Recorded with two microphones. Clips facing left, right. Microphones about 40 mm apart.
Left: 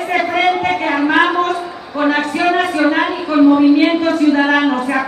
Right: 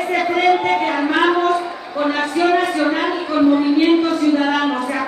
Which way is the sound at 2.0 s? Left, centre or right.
Left.